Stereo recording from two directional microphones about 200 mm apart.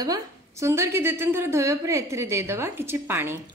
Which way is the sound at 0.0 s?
15° right (ahead or behind).